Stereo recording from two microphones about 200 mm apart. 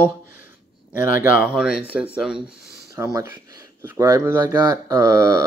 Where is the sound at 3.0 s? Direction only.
15° right (ahead or behind).